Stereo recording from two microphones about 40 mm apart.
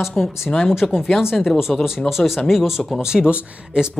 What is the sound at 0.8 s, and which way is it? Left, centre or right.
Speech, left.